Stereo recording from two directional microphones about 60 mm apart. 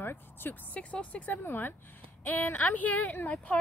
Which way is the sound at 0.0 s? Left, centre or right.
Left.